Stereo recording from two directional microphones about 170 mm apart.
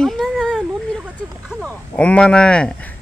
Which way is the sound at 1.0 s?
5° right (ahead or behind).